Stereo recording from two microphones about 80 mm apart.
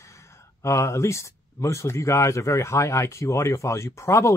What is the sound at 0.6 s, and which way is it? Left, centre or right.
Speech, left.